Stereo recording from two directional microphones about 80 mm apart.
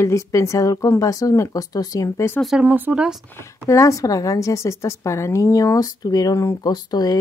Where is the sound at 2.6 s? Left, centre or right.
Right.